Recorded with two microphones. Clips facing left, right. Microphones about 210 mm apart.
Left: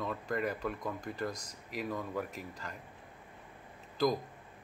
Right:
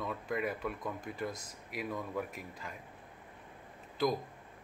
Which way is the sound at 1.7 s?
5° right (ahead or behind).